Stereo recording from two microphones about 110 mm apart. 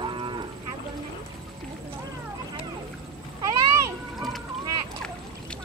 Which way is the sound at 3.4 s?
35° right (ahead or behind).